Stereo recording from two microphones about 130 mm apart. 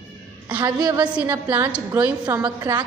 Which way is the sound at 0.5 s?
35° right (ahead or behind).